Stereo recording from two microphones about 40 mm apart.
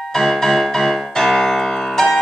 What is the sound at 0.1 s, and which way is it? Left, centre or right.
Music, centre.